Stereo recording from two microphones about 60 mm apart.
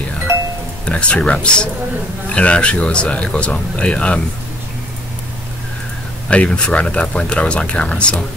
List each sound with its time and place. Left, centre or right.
0.8 s speech: centre
6.2 s speech: left